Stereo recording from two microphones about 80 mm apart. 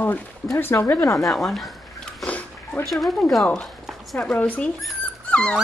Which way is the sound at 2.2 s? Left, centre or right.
Centre.